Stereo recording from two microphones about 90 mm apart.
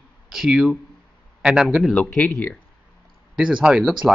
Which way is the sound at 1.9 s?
15° left (ahead or behind).